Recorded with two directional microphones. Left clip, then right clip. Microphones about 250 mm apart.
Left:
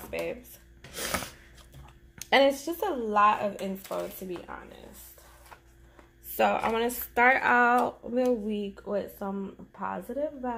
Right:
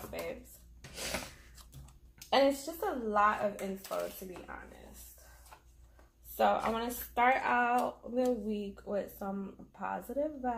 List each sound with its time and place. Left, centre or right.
0.9 s a sound: left
2.1 s speech: left
6.3 s speech: left